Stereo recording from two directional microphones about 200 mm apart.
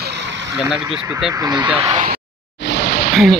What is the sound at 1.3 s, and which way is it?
Speech, 20° right (ahead or behind).